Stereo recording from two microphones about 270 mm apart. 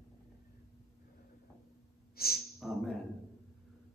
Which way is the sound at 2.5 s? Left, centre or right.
Centre.